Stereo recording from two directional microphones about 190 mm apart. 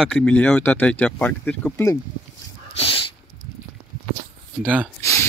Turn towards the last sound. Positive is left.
turn(degrees=15)  # may be behind; listen again after turning